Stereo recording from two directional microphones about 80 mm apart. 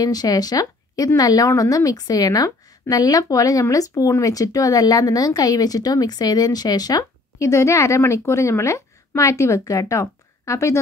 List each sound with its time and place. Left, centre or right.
0.0 s a woman's voice: left